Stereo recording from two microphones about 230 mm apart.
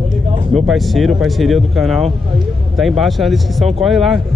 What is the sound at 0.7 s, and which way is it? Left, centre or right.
Speech, centre.